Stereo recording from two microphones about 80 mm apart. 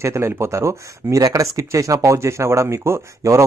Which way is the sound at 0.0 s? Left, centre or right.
Right.